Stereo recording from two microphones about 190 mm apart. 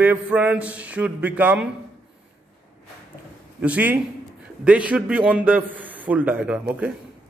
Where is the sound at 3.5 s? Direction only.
10° right (ahead or behind).